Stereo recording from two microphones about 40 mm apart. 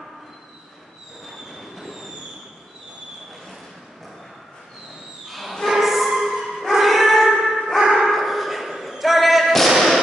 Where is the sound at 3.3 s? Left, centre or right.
Centre.